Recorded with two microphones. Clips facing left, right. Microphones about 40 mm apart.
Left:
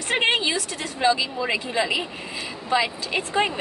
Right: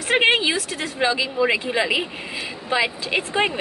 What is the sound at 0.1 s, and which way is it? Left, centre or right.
A woman's voice, right.